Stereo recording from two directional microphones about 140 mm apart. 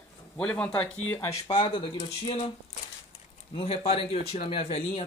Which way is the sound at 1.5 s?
35° left (ahead or behind).